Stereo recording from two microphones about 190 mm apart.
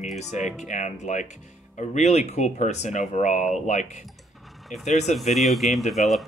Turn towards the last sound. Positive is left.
turn(degrees=0)  # may be behind; listen again after turning